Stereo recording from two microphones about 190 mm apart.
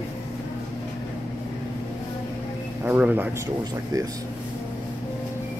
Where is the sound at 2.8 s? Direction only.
10° right (ahead or behind).